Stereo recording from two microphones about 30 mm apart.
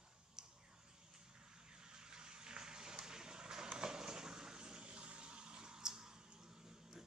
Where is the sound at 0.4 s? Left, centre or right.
Centre.